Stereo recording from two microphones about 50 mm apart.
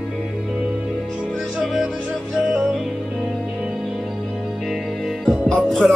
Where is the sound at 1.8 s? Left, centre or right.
Centre.